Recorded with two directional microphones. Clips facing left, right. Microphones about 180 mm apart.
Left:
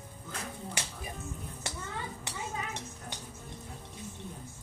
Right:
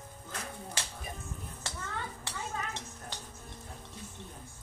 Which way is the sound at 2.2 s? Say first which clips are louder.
Even; 15° left (ahead or behind).